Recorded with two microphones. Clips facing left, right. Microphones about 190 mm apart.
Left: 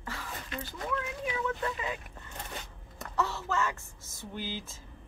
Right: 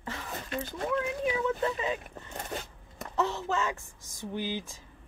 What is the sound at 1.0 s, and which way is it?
Speech, 25° right (ahead or behind).